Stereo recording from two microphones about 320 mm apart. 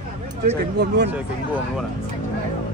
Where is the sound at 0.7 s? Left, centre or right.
Right.